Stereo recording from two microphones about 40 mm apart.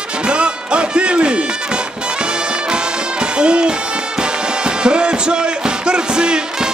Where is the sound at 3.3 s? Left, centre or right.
Right.